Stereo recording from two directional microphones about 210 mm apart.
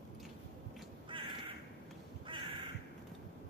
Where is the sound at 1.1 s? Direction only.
25° right (ahead or behind).